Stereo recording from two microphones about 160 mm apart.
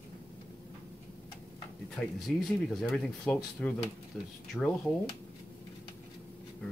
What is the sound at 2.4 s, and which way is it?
Speech, centre (ahead or behind).